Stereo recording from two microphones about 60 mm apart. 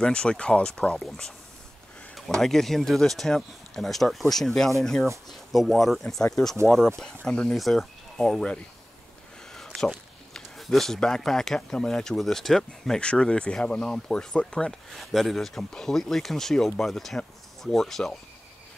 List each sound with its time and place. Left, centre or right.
0.0 s speech: centre
2.1 s speech: centre
9.8 s speech: centre
14.9 s speech: centre